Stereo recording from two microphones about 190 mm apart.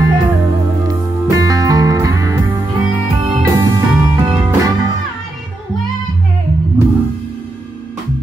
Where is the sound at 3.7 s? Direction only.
15° right (ahead or behind).